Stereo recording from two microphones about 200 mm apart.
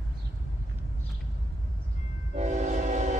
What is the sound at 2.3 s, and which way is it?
Train, 35° right (ahead or behind).